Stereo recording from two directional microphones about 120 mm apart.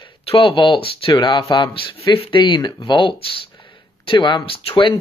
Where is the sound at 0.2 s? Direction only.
50° left (ahead or behind).